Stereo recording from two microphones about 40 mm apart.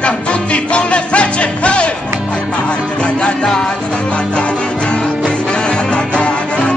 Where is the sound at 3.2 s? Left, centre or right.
Centre.